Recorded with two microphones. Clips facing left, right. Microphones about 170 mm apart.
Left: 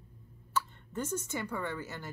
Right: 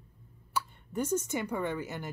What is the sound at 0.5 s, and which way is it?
Speech, 15° right (ahead or behind).